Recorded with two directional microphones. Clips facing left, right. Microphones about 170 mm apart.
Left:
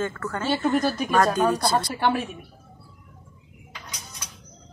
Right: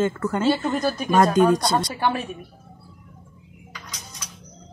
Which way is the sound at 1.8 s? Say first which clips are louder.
Even; centre (ahead or behind).